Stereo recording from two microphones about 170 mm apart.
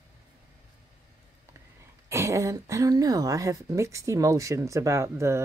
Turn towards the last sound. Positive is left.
turn(degrees=-15)  # may be behind; listen again after turning